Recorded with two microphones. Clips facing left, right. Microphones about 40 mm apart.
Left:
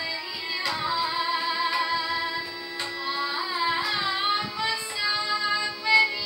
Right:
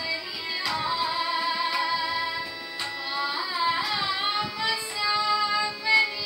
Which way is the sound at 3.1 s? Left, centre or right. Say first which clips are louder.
Right 1 dB; centre.